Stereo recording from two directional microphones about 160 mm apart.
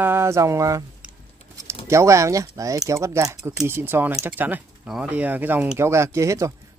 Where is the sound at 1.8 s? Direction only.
20° right (ahead or behind).